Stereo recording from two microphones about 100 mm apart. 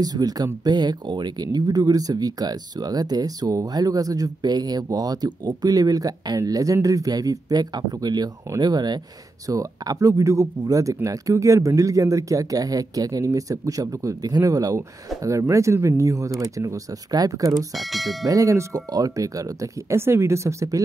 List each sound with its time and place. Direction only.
0.0 s speech: 40° right (ahead or behind)
17.7 s speech: centre (ahead or behind)
18.2 s speech: 35° right (ahead or behind)